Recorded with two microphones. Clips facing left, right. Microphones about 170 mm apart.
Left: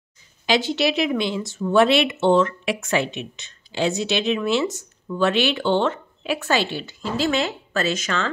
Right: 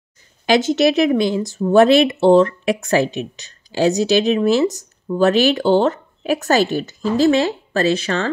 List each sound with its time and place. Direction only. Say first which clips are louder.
0.5 s speech: right 6 dB; 45° right (ahead or behind)